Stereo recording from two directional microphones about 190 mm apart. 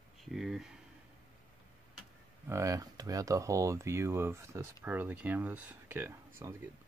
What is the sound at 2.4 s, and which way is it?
Speech, 15° right (ahead or behind).